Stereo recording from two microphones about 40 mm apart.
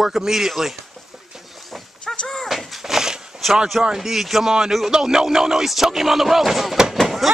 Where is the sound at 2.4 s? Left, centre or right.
Centre.